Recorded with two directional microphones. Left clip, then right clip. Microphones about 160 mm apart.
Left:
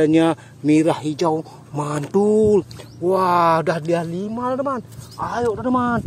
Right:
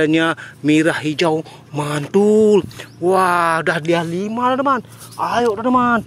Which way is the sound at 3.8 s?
25° right (ahead or behind).